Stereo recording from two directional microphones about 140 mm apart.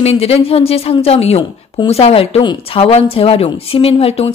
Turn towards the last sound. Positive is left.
turn(degrees=45)  # may be behind; listen again after turning